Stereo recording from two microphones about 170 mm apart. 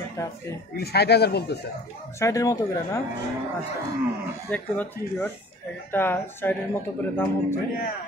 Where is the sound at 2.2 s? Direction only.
20° left (ahead or behind).